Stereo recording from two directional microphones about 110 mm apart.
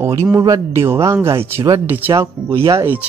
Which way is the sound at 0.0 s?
25° right (ahead or behind).